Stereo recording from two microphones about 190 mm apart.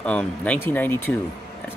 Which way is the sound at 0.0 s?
5° left (ahead or behind).